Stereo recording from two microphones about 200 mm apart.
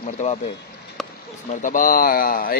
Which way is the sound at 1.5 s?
40° left (ahead or behind).